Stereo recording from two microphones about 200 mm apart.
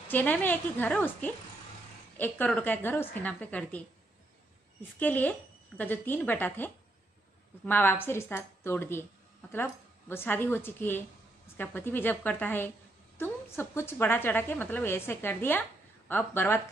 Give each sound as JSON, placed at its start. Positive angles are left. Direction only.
{"t": 0.1, "sound": "a woman's voice", "side_deg": 10}
{"t": 4.9, "sound": "a woman's voice", "side_deg": 10}